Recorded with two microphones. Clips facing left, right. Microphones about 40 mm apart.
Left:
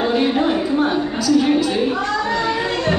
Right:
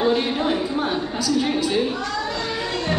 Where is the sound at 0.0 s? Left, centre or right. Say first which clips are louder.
Left 3 dB; centre.